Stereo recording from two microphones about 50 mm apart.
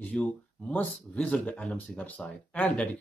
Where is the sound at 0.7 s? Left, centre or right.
Left.